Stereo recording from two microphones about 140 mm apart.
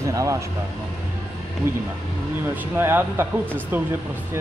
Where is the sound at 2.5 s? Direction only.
15° right (ahead or behind).